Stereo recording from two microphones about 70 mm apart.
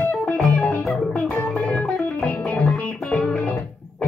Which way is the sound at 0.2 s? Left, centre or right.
Centre.